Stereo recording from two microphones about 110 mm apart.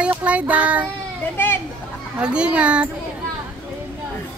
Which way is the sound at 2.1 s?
10° right (ahead or behind).